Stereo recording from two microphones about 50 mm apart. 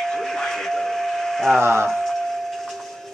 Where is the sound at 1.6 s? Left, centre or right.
Right.